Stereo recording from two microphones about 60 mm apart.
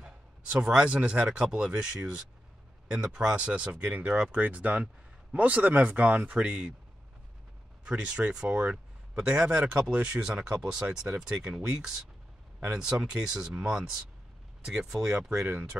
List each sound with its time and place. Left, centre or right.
0.0 s a man's voice: centre
7.8 s a man's voice: centre